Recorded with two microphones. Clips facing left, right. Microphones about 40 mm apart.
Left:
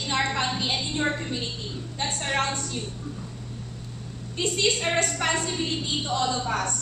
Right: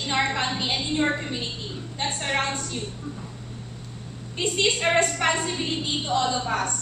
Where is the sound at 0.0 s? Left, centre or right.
Centre.